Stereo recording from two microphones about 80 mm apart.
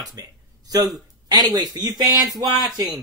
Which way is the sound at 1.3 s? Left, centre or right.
Right.